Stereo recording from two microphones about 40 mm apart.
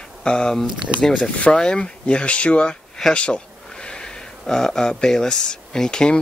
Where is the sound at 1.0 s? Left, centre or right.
Centre.